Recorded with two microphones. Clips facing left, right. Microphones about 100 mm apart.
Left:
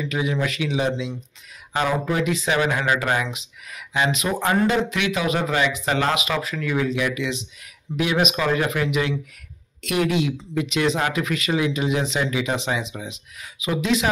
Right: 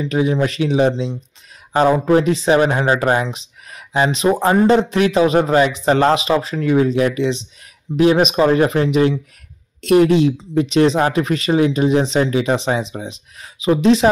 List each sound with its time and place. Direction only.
0.0 s speech: 35° right (ahead or behind)